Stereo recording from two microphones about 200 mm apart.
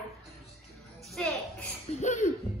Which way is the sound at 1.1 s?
5° left (ahead or behind).